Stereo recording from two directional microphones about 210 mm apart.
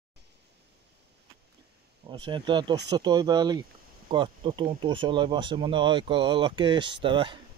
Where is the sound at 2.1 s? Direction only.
20° right (ahead or behind).